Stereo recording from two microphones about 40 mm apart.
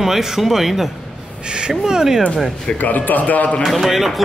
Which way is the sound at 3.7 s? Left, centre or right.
Centre.